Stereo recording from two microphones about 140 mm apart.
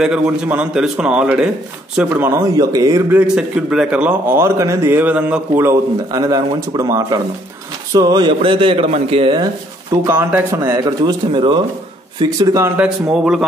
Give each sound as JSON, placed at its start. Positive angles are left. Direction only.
{"t": 0.0, "sound": "a man's voice", "side_deg": -10}
{"t": 2.5, "sound": "speech", "side_deg": -25}
{"t": 3.2, "sound": "a man's voice", "side_deg": -5}
{"t": 10.0, "sound": "speech", "side_deg": -20}
{"t": 12.8, "sound": "a man's voice", "side_deg": -5}